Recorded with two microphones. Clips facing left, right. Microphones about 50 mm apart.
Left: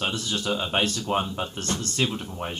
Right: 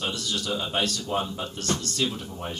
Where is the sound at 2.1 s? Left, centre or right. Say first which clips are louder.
Left 1 dB; centre.